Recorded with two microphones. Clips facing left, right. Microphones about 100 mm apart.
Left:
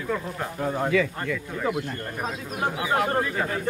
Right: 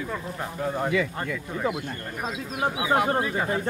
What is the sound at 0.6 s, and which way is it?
Speech, 5° left (ahead or behind).